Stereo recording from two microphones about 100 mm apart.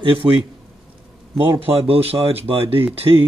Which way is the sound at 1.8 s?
75° right (ahead or behind).